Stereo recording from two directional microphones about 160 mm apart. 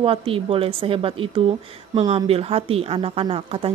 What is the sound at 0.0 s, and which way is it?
Speech, 35° right (ahead or behind).